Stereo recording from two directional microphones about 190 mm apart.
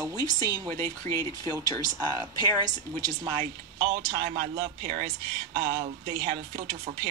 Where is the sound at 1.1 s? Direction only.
40° right (ahead or behind).